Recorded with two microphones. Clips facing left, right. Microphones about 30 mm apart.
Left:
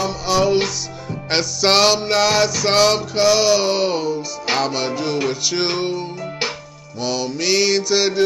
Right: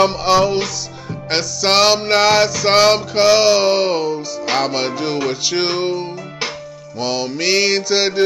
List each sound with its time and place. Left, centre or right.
0.0 s music: right
1.3 s music: centre
2.0 s music: centre